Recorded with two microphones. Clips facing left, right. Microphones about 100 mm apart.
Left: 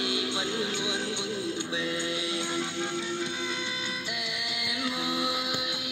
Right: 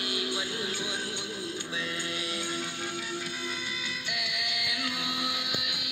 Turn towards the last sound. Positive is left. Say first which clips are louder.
# left 4 dB
turn(degrees=25)  # may be behind; listen again after turning